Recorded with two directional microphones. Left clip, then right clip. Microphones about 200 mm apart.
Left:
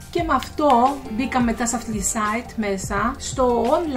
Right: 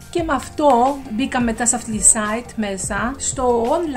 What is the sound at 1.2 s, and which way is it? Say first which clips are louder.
Speech: right 1 dB; 50° right (ahead or behind).